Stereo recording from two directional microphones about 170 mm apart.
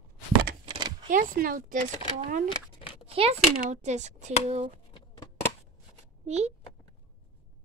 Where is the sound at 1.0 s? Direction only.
50° right (ahead or behind).